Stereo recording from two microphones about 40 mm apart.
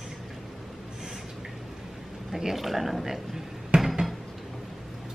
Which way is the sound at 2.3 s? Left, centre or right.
Centre.